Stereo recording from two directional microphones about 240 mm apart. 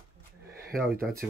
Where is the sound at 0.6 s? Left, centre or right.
Right.